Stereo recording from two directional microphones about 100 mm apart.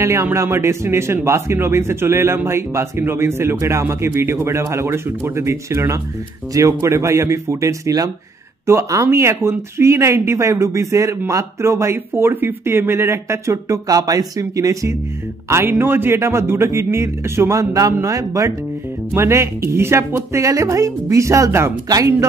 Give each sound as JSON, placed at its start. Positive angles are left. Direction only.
{"t": 0.0, "sound": "speech", "side_deg": -30}
{"t": 15.5, "sound": "speech", "side_deg": -20}
{"t": 21.8, "sound": "speech", "side_deg": -40}